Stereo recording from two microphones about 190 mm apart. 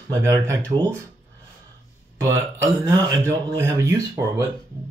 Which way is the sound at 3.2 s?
15° right (ahead or behind).